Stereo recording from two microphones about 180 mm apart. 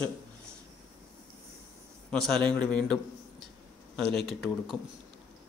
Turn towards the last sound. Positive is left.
turn(degrees=0)  # may be behind; listen again after turning